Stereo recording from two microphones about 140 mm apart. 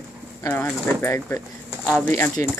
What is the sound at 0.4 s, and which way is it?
Speech, 15° left (ahead or behind).